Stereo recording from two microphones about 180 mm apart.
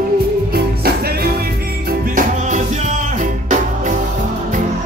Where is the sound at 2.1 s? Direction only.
40° right (ahead or behind).